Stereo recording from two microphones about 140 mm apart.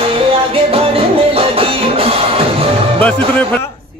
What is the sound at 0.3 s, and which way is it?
Music, 45° right (ahead or behind).